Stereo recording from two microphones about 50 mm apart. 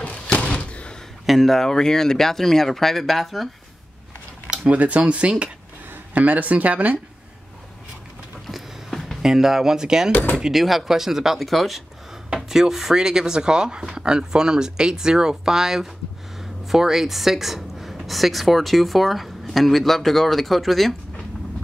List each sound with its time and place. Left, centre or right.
0.0 s slam: left
1.2 s speech: centre
4.5 s speech: right
8.5 s a sound: centre
9.2 s speech: centre
10.1 s a sound: left
10.5 s a woman's voice: centre